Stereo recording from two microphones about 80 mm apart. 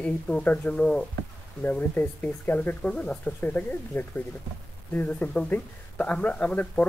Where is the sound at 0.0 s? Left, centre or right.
Centre.